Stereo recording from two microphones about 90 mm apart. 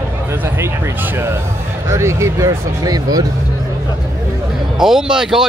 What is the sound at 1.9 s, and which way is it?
Speech, 30° right (ahead or behind).